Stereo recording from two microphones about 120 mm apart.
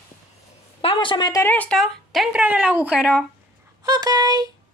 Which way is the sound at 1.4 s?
15° left (ahead or behind).